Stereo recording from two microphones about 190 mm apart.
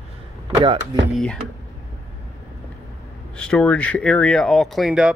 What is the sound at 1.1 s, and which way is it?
Speech, centre (ahead or behind).